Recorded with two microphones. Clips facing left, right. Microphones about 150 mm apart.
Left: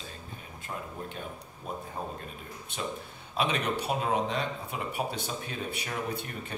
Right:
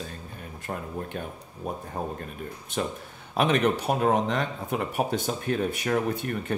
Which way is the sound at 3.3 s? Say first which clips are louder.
Right 7 dB; 55° right (ahead or behind).